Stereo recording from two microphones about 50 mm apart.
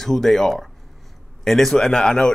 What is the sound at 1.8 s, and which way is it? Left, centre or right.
Speech, centre.